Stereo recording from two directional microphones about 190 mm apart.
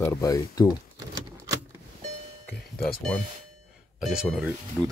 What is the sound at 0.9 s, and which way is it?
Power windows, 20° right (ahead or behind).